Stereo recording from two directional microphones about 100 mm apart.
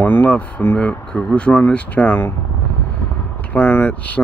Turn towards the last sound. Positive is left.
turn(degrees=15)  # may be behind; listen again after turning